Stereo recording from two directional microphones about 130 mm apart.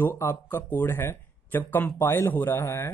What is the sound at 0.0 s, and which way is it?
Speech, 15° left (ahead or behind).